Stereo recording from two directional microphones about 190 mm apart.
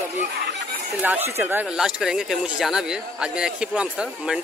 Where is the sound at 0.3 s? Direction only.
65° right (ahead or behind).